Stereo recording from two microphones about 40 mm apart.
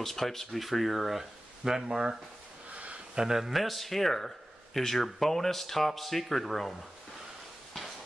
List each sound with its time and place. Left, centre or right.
0.0 s speech: centre
2.7 s a sound: right
3.2 s speech: centre